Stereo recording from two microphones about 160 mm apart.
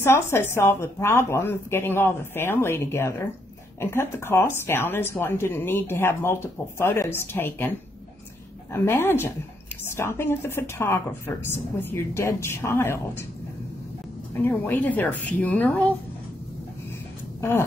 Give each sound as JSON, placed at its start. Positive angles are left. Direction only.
{"t": 0.0, "sound": "speech", "side_deg": 15}
{"t": 8.7, "sound": "speech", "side_deg": 15}
{"t": 14.3, "sound": "speech", "side_deg": 10}
{"t": 17.4, "sound": "speech", "side_deg": 15}